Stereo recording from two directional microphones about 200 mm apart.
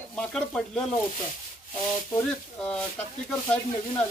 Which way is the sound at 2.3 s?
5° left (ahead or behind).